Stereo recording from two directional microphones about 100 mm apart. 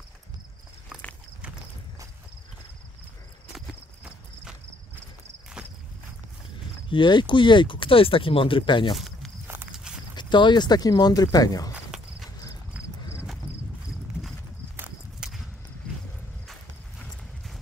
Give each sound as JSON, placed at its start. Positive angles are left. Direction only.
{"t": 6.9, "sound": "speech", "side_deg": 50}
{"t": 8.9, "sound": "snake", "side_deg": 0}
{"t": 10.1, "sound": "speech", "side_deg": 50}
{"t": 11.7, "sound": "walk", "side_deg": -5}
{"t": 12.7, "sound": "horse", "side_deg": -10}
{"t": 15.2, "sound": "a sound", "side_deg": -5}